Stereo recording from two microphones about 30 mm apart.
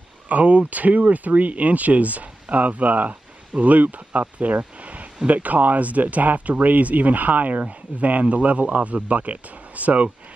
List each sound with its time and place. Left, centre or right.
0.3 s speech: right
7.5 s speech: right